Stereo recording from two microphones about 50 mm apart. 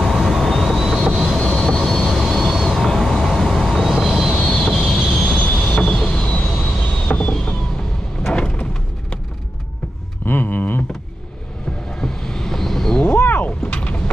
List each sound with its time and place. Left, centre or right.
0.0 s vehicle: centre
1.4 s vehicle: centre
5.3 s train: left
5.9 s vehicle: centre
6.6 s music: left
8.4 s a sound: left
10.2 s a sound: left
11.9 s vehicle: centre
13.1 s vehicle: left
13.7 s mechanisms: left